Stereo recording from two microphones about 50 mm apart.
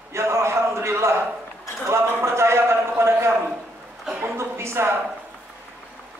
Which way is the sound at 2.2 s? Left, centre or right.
Right.